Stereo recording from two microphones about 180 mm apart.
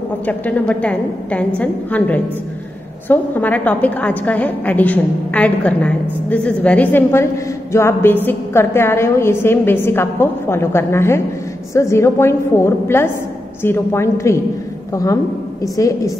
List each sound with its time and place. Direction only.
0.3 s a woman's voice: 10° left (ahead or behind)